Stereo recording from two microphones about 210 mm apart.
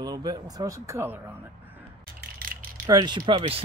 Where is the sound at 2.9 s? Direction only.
20° right (ahead or behind).